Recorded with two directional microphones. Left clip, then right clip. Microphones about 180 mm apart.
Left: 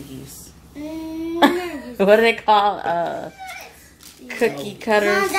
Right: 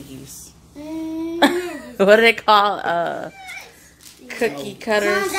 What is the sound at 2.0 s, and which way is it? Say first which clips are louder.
Speech: right 2 dB; 20° right (ahead or behind).